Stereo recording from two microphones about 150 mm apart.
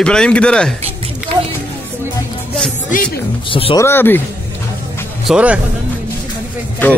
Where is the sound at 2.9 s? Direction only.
60° left (ahead or behind).